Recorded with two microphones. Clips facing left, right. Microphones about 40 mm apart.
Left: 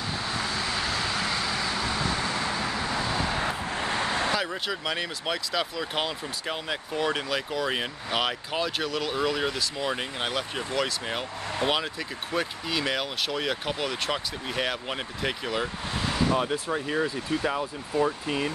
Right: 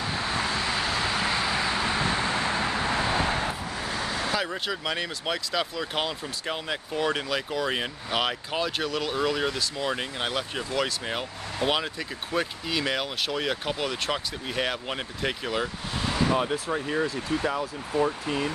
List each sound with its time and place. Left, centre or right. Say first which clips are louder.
0.0 s vehicle: right 2 dB; right
3.6 s vehicle: left 3 dB; left
4.4 s speech: even; centre
16.2 s a sound: right 1 dB; centre
16.4 s speech: even; centre